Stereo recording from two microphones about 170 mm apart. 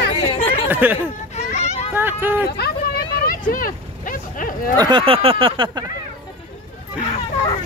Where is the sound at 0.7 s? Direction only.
10° right (ahead or behind).